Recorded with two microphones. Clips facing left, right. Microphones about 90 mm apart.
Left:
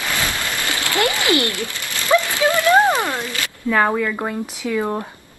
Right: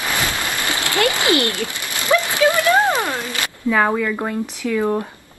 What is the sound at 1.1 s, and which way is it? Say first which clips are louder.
Speech: right 1 dB; 20° right (ahead or behind).